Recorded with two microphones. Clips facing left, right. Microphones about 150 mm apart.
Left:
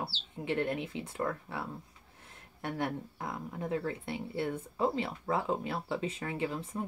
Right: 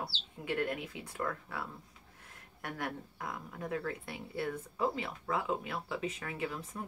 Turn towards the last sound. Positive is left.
turn(degrees=30)  # may be behind; listen again after turning